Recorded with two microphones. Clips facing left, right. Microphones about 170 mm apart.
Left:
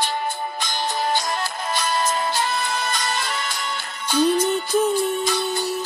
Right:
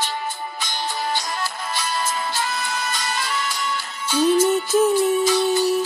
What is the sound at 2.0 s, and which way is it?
Music, 30° left (ahead or behind).